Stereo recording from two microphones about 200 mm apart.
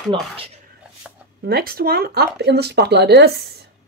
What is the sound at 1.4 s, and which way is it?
Speech, 50° right (ahead or behind).